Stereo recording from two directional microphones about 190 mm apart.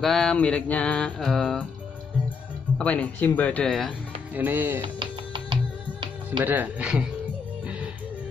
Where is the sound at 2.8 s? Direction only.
10° left (ahead or behind).